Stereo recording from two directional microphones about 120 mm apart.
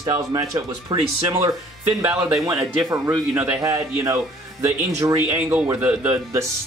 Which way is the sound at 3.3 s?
25° right (ahead or behind).